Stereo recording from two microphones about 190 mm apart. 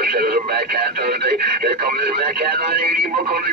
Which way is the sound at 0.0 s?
50° right (ahead or behind).